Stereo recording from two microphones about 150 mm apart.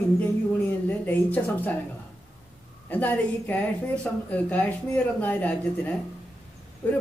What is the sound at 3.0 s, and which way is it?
Speech, 10° left (ahead or behind).